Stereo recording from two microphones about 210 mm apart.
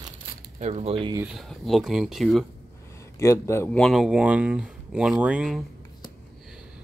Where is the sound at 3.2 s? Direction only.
15° left (ahead or behind); by 5.6 s 5° right (ahead or behind).